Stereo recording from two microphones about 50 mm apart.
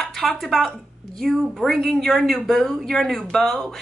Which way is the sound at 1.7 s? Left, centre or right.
Centre.